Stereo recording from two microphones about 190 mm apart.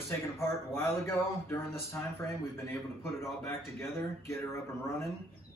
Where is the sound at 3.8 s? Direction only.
15° left (ahead or behind).